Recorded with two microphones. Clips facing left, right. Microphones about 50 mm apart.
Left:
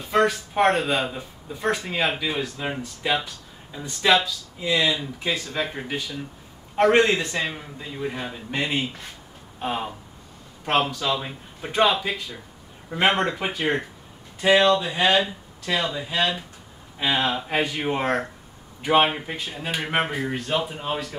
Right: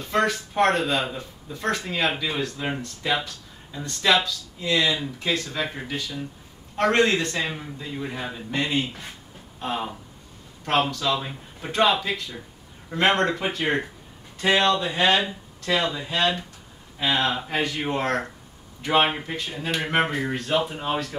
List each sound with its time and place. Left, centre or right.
0.0 s speech: centre